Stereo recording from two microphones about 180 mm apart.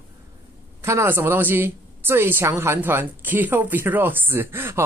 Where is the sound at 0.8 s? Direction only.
15° right (ahead or behind).